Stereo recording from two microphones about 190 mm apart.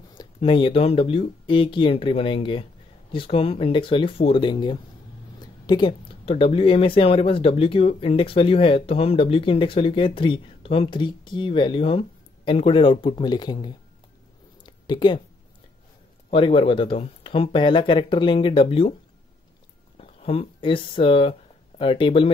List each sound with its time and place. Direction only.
0.1 s speech: 25° left (ahead or behind)
16.3 s speech: 30° left (ahead or behind)
20.0 s speech: 30° left (ahead or behind)